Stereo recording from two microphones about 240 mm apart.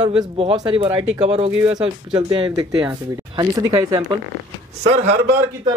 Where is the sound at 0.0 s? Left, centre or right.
Right.